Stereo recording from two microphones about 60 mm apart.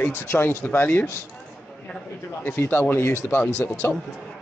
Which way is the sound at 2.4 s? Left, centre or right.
Left.